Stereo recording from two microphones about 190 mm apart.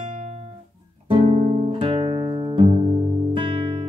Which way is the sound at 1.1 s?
30° right (ahead or behind).